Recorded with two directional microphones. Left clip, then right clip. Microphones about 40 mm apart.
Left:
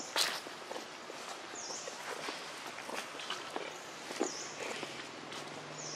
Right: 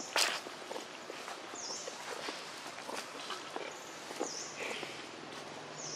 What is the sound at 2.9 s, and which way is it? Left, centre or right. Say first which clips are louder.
Run: left 3 dB; left.